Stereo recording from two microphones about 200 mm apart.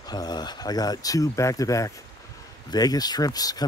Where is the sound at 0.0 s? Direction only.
20° left (ahead or behind).